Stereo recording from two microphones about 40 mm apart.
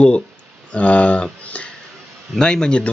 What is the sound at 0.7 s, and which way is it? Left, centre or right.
Speech, left.